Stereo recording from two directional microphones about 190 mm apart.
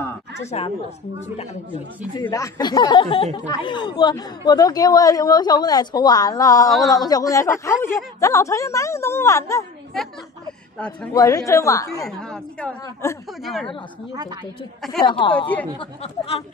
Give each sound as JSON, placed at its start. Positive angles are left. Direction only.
{"t": 0.5, "sound": "a woman's voice", "side_deg": 35}
{"t": 2.1, "sound": "a woman's voice", "side_deg": 20}
{"t": 10.8, "sound": "a woman's voice", "side_deg": 5}
{"t": 11.1, "sound": "a woman's voice", "side_deg": 20}
{"t": 12.1, "sound": "a woman's voice", "side_deg": 5}
{"t": 12.8, "sound": "a woman's voice", "side_deg": 15}
{"t": 13.4, "sound": "a woman's voice", "side_deg": 0}
{"t": 14.1, "sound": "a woman's voice", "side_deg": -20}
{"t": 15.0, "sound": "a woman's voice", "side_deg": 25}